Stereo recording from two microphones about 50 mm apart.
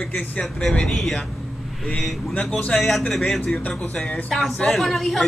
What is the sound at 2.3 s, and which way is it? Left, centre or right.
Speech, left.